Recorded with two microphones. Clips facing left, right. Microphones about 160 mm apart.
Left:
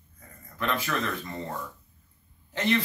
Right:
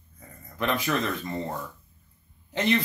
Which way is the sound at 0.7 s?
15° right (ahead or behind).